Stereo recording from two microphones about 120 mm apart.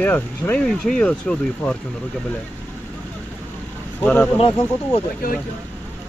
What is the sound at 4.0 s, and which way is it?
Speech, 10° left (ahead or behind).